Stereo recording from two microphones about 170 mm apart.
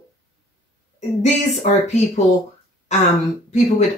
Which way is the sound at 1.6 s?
45° left (ahead or behind).